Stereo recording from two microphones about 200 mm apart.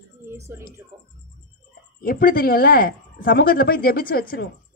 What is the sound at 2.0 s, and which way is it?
Speech, 45° left (ahead or behind).